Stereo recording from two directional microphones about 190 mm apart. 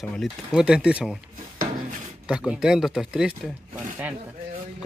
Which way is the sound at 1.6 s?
45° right (ahead or behind).